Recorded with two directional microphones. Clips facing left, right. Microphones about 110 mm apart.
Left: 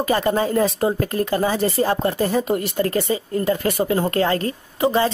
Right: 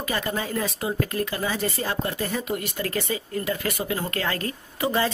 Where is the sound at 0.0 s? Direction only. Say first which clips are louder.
Left 9 dB; 35° left (ahead or behind).